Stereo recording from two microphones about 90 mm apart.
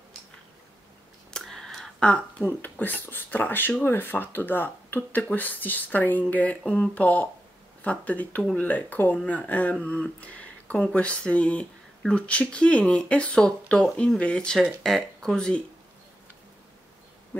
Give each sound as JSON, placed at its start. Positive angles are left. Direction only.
{"t": 1.3, "sound": "speech", "side_deg": 5}